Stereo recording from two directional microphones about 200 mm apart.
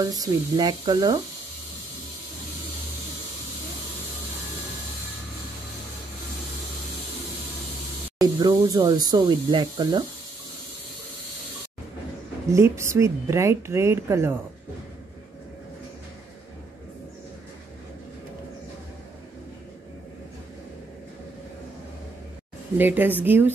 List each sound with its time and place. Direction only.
0.2 s speech: 20° right (ahead or behind)
8.2 s speech: 20° right (ahead or behind)
12.5 s a woman's voice: 15° right (ahead or behind)
22.8 s a woman's voice: 10° right (ahead or behind)